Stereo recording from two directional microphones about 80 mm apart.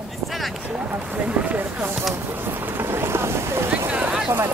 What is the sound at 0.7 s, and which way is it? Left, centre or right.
Speech, centre.